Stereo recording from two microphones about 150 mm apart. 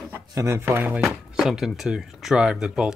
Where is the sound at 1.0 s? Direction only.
Centre (ahead or behind).